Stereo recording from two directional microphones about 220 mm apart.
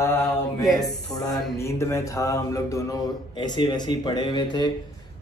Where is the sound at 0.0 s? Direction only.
10° left (ahead or behind).